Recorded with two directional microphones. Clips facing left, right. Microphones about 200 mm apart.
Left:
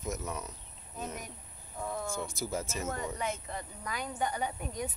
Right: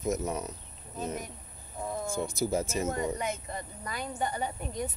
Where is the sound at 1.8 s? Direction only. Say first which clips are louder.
Right 3 dB; 15° right (ahead or behind).